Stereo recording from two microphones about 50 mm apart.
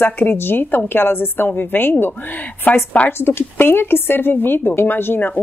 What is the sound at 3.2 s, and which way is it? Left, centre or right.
Speech, left.